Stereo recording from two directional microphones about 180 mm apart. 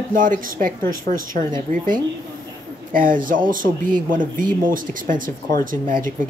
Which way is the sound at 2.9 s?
50° right (ahead or behind).